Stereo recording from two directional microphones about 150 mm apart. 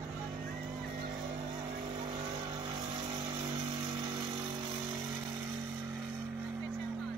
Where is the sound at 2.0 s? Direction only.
30° right (ahead or behind).